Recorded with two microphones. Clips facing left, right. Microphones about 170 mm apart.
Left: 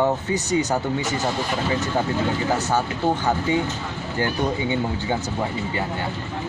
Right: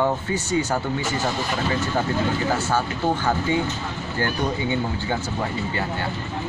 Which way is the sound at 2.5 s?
20° left (ahead or behind).